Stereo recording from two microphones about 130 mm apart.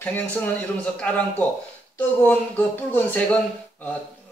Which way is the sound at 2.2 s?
15° left (ahead or behind).